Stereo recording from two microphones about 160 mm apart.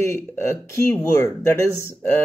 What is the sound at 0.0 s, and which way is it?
Speech, 15° left (ahead or behind).